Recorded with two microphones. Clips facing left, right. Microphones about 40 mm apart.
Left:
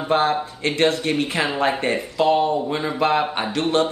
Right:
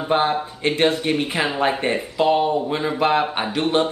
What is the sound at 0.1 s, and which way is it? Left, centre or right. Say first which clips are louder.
A man's voice: even; centre.